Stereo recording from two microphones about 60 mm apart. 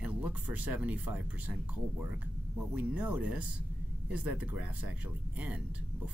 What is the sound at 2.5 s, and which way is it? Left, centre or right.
Speech, right.